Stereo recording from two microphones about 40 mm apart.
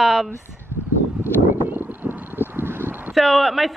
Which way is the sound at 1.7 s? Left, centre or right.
Right.